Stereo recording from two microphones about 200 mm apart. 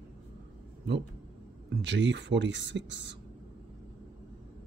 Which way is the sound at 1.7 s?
60° right (ahead or behind).